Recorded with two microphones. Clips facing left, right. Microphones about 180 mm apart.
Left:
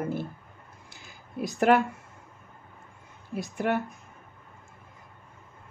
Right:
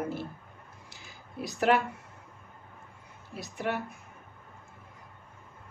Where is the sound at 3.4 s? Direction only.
50° left (ahead or behind).